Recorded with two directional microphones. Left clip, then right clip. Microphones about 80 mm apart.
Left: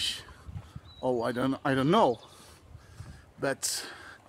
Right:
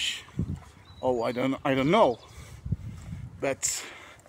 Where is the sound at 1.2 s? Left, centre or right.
Centre.